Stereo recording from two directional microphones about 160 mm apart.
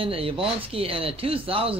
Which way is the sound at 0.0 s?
35° right (ahead or behind).